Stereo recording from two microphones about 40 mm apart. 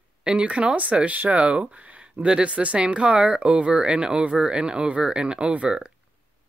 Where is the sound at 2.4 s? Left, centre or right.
Right.